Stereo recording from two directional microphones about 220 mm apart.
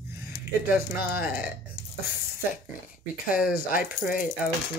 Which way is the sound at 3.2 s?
40° left (ahead or behind).